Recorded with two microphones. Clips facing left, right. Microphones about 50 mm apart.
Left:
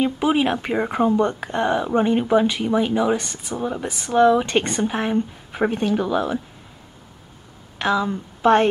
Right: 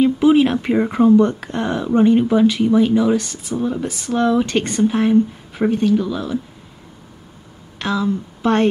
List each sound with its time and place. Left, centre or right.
0.0 s speech: centre; by 6.4 s left
7.8 s speech: centre